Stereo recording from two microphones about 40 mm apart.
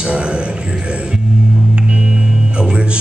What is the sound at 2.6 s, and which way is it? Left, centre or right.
Music, right.